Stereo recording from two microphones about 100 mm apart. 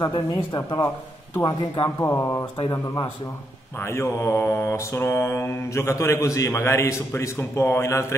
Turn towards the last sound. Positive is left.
turn(degrees=25)  # may be behind; listen again after turning